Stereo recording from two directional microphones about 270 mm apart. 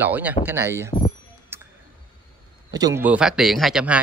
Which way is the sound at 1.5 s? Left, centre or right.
Centre.